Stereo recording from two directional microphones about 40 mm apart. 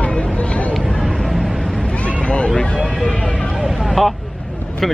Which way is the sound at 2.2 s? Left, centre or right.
Left.